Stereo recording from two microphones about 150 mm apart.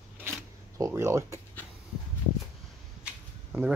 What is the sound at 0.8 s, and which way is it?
Speech, 20° right (ahead or behind).